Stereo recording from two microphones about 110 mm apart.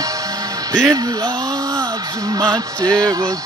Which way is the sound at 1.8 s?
35° right (ahead or behind).